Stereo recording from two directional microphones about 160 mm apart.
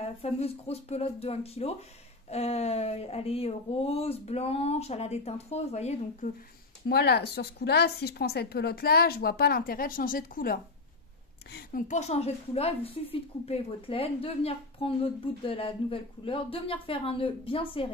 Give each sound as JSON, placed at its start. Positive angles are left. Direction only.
{"t": 0.2, "sound": "speech", "side_deg": 40}
{"t": 6.9, "sound": "a woman's voice", "side_deg": 90}
{"t": 11.9, "sound": "speech", "side_deg": 45}